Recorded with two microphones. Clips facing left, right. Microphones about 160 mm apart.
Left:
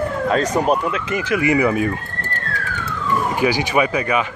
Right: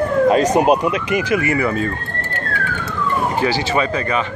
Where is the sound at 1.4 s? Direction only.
15° left (ahead or behind).